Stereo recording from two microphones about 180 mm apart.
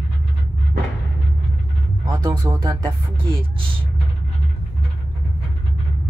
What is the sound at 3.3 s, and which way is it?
Speech, 30° right (ahead or behind).